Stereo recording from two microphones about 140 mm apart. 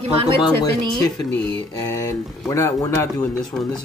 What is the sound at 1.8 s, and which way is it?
Speech, 20° left (ahead or behind).